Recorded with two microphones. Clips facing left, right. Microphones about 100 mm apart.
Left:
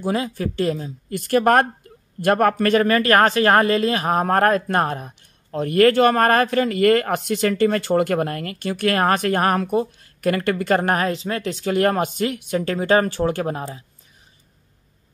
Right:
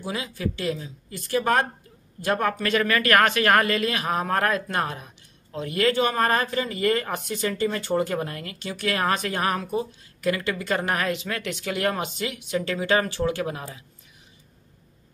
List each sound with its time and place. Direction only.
0.0 s speech: 45° left (ahead or behind)
1.1 s speech: 60° left (ahead or behind)
2.7 s speech: 35° left (ahead or behind)